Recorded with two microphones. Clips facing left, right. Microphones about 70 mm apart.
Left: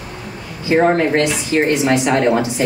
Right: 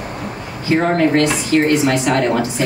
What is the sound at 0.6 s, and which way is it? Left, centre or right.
Speech, left.